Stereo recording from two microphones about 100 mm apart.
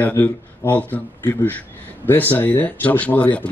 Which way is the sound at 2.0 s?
20° left (ahead or behind).